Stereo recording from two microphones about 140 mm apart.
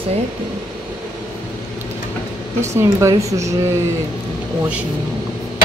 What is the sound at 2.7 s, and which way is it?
Speech, 20° right (ahead or behind).